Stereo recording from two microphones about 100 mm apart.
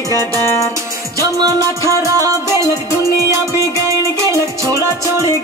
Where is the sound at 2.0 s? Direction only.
35° right (ahead or behind).